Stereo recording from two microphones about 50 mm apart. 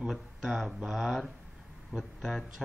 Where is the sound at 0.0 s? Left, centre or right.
Centre.